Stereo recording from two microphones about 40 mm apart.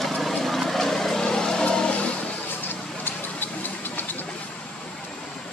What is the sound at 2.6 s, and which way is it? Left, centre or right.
Vehicle, left.